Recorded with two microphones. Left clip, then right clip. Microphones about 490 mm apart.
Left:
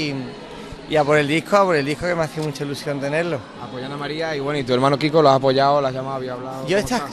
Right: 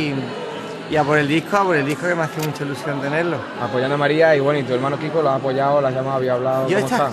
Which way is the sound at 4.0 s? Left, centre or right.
Left.